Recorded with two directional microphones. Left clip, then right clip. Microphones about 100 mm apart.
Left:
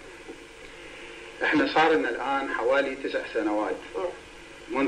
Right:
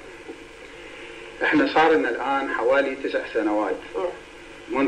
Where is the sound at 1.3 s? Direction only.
25° right (ahead or behind).